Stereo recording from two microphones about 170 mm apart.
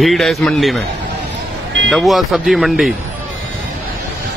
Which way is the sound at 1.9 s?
Centre (ahead or behind).